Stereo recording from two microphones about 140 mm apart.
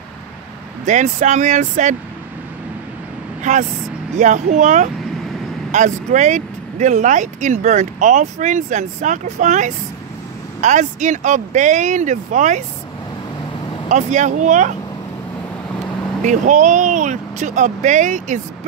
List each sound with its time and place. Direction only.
0.8 s speech: 60° right (ahead or behind)
4.2 s speech: 60° right (ahead or behind)
13.8 s speech: 60° right (ahead or behind)
16.3 s speech: 60° right (ahead or behind)